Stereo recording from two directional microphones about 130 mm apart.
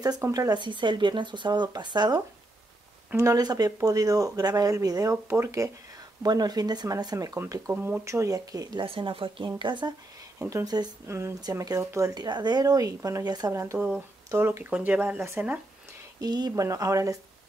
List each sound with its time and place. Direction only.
0.0 s speech: 30° right (ahead or behind)
8.8 s speech: 45° right (ahead or behind)
10.4 s speech: 25° right (ahead or behind)
13.7 s speech: 10° right (ahead or behind)
14.3 s speech: 20° right (ahead or behind)
16.2 s speech: 30° right (ahead or behind)